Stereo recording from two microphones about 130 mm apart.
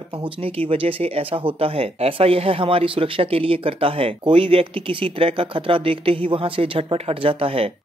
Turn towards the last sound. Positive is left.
turn(degrees=-45)  # may be behind; listen again after turning